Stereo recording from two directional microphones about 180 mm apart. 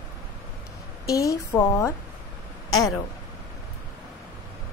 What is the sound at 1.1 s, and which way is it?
Speech, 15° left (ahead or behind).